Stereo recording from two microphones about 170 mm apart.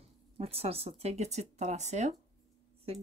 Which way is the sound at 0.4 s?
35° right (ahead or behind).